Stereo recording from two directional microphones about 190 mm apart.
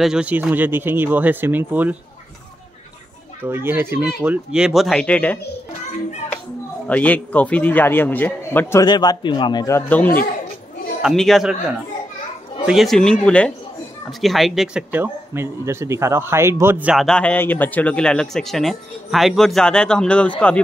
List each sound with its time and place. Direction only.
0.0 s speech: 5° right (ahead or behind)
3.4 s speech: 10° right (ahead or behind); by 5.4 s 5° left (ahead or behind)
6.9 s a man's voice: 10° left (ahead or behind)
8.8 s a man's voice: 20° left (ahead or behind); by 11.5 s centre (ahead or behind)
12.6 s speech: centre (ahead or behind)